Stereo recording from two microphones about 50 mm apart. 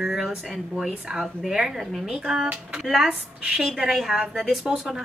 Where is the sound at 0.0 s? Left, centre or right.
Centre.